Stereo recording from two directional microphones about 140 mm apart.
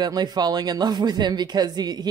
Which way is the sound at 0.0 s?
30° right (ahead or behind).